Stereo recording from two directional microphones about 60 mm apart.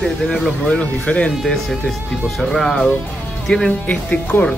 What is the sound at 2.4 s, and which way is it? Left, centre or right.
Speech, centre.